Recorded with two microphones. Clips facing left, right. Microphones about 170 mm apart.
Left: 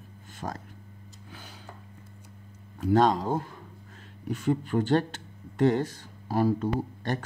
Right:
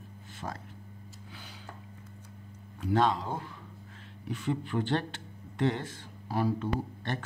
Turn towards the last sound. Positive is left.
turn(degrees=40)  # may be behind; listen again after turning